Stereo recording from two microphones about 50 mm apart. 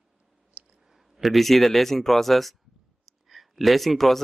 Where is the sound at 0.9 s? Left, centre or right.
Centre.